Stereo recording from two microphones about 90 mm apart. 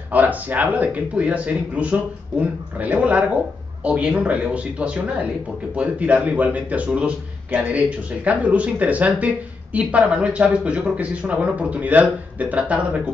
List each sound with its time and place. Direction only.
0.1 s speech: 20° right (ahead or behind)